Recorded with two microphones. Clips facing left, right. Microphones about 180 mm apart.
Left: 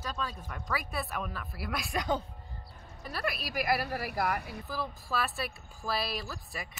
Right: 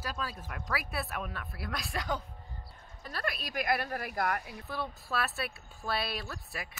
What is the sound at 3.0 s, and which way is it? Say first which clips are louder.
Speech: left 2 dB; 5° left (ahead or behind).